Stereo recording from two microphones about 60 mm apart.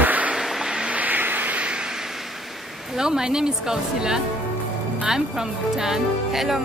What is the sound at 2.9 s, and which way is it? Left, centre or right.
Speech, centre.